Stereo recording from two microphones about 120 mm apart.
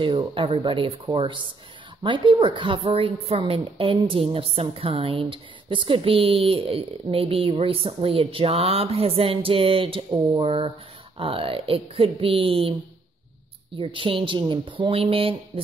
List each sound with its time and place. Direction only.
0.0 s a woman's voice: 45° right (ahead or behind)
13.7 s a woman's voice: 45° right (ahead or behind)